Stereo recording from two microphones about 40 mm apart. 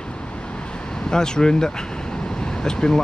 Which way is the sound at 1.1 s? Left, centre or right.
Centre.